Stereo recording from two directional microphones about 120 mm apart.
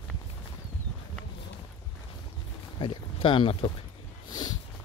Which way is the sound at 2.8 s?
45° left (ahead or behind).